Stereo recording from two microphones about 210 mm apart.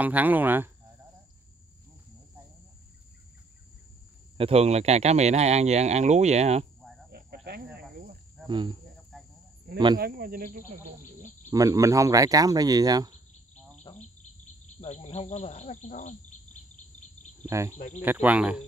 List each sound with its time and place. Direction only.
0.0 s speech: 10° right (ahead or behind)
4.4 s speech: 30° right (ahead or behind)
7.1 s cricket: 50° right (ahead or behind)
8.5 s cricket: 20° right (ahead or behind)
9.1 s cricket: centre (ahead or behind)
9.9 s speech: 45° right (ahead or behind)
11.5 s speech: 15° right (ahead or behind)
14.8 s insect: 30° left (ahead or behind)
17.4 s speech: 15° right (ahead or behind)
17.7 s insect: 35° left (ahead or behind)
18.0 s speech: 10° right (ahead or behind)